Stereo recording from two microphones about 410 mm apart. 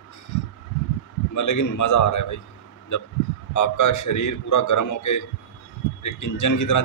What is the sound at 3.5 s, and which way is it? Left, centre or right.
Speech, left.